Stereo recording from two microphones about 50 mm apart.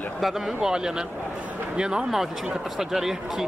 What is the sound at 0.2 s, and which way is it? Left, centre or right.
Speech, centre.